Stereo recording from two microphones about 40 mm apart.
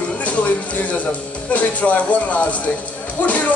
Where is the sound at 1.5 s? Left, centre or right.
Left.